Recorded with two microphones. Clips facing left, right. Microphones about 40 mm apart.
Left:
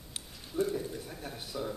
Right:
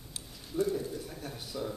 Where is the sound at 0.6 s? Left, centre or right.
Left.